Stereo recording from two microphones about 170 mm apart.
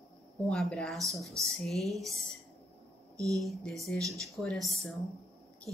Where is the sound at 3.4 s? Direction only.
Centre (ahead or behind).